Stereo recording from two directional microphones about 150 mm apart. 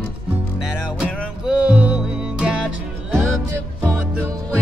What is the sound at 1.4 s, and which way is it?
Music, 10° right (ahead or behind).